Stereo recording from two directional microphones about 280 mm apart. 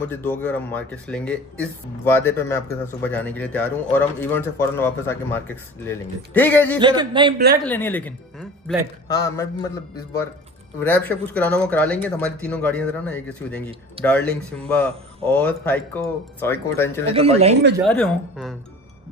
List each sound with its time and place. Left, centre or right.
0.1 s speech: centre
6.8 s speech: centre
7.6 s speech: centre
10.8 s speech: centre
17.0 s speech: right
17.8 s speech: centre